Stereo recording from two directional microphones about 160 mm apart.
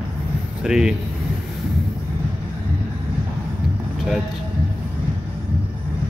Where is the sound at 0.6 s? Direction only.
5° right (ahead or behind).